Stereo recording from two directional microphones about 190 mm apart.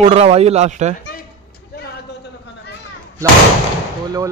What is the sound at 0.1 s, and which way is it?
Speech, 30° right (ahead or behind).